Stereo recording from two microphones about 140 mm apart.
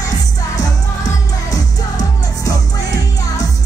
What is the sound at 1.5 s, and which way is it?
Music, 25° left (ahead or behind).